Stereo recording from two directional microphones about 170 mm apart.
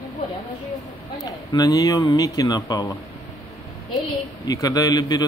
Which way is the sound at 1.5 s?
25° left (ahead or behind).